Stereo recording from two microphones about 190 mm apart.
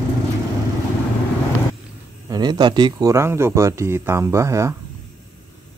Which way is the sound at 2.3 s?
20° right (ahead or behind).